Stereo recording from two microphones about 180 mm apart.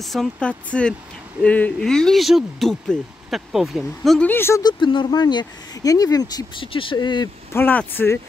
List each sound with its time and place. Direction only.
0.0 s speech: centre (ahead or behind); by 7.2 s 25° left (ahead or behind)
7.5 s speech: 10° left (ahead or behind)